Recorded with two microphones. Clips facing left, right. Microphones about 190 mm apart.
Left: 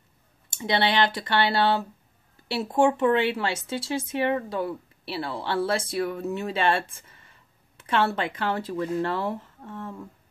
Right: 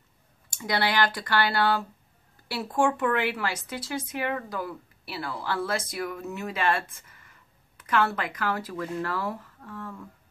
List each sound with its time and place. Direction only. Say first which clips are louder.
0.5 s speech: left 3 dB; 25° left (ahead or behind)